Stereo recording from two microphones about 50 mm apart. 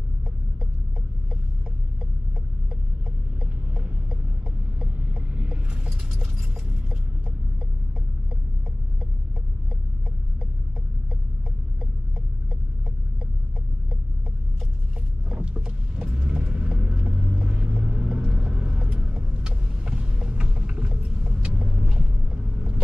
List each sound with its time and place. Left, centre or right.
3.3 s a sound: centre
15.2 s vehicle: right
21.9 s boat: centre